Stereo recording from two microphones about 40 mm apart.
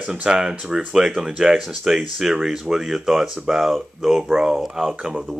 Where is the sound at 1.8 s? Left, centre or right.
Centre.